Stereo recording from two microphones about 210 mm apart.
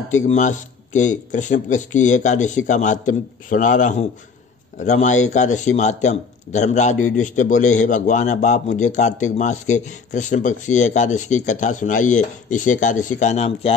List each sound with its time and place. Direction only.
0.1 s a man's voice: 35° left (ahead or behind)